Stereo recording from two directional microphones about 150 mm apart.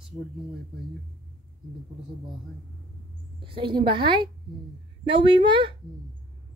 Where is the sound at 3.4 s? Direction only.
35° right (ahead or behind).